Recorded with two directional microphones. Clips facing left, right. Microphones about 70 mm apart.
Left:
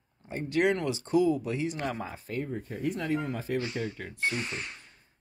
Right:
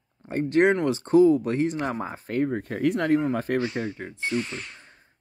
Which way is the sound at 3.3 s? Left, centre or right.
Right.